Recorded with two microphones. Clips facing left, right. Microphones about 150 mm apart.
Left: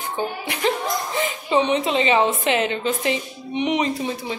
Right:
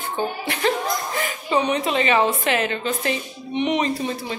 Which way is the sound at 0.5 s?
20° left (ahead or behind).